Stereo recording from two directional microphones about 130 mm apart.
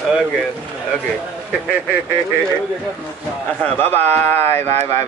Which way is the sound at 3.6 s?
15° left (ahead or behind).